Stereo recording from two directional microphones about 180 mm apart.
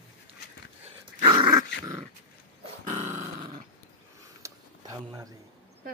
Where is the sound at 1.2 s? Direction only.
25° right (ahead or behind).